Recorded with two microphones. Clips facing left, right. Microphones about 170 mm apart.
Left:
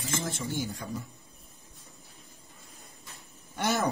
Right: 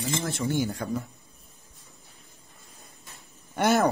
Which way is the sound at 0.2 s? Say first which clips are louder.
Right 6 dB; 70° right (ahead or behind).